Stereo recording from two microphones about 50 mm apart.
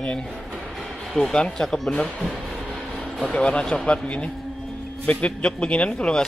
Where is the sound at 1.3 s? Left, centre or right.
Centre.